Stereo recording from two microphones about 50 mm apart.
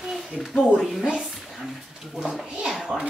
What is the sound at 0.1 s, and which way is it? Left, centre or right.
Speech, centre.